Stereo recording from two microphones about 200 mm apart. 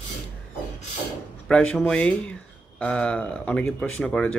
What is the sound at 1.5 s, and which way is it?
Speech, 5° left (ahead or behind).